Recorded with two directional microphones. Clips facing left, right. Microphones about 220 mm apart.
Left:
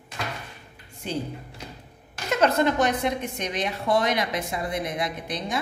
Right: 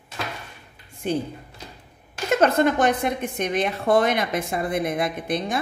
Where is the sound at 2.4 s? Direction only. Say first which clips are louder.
Right 2 dB; 55° right (ahead or behind).